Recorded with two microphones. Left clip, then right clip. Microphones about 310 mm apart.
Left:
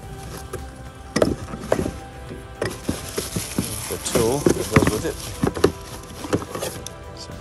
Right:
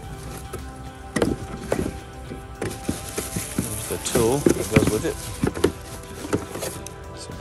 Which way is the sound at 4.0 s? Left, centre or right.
Centre.